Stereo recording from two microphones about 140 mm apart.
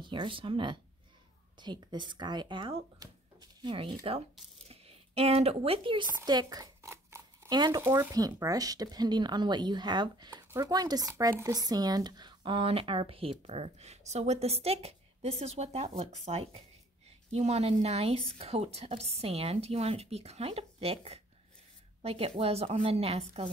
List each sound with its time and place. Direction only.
0.0 s speech: 35° right (ahead or behind)
3.7 s speech: 40° right (ahead or behind)
7.8 s a woman's voice: 15° right (ahead or behind); by 23.5 s 45° right (ahead or behind)